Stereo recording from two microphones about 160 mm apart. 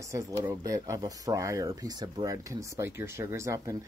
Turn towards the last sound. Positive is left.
turn(degrees=-20)  # may be behind; listen again after turning